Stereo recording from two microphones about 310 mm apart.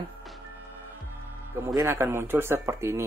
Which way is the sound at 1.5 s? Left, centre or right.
Centre.